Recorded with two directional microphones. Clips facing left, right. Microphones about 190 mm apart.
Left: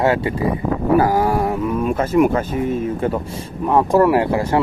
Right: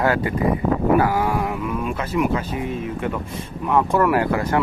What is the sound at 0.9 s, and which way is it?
Speech, 40° left (ahead or behind).